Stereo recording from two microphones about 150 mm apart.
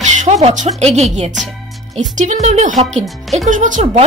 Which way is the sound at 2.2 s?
50° right (ahead or behind).